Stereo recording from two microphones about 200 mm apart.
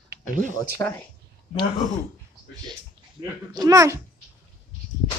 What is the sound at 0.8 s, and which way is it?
Speech, 10° left (ahead or behind).